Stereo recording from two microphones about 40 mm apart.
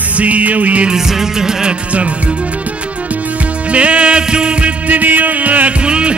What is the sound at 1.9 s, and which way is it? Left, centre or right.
Music, right.